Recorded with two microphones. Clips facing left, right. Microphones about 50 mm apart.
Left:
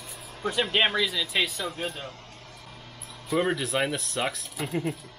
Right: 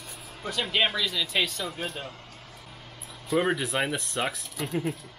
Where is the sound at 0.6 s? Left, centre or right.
Centre.